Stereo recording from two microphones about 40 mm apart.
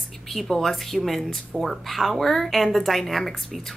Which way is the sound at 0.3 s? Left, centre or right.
Centre.